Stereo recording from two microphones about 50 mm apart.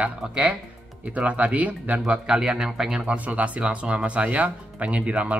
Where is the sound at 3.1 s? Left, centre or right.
Right.